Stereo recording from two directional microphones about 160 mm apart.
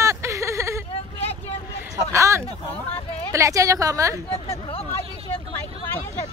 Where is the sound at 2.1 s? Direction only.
20° right (ahead or behind).